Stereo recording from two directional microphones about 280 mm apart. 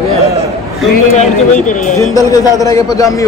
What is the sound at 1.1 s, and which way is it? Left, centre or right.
Speech, left.